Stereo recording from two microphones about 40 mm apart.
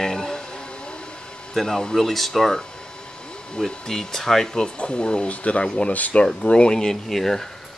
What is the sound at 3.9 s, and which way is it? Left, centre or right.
Speech, centre.